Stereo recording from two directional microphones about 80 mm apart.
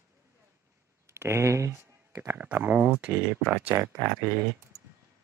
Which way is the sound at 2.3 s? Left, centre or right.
Right.